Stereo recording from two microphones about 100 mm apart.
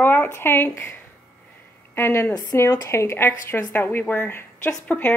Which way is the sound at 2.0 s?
25° left (ahead or behind).